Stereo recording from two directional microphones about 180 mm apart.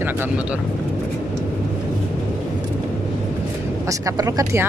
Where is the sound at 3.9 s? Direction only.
20° right (ahead or behind).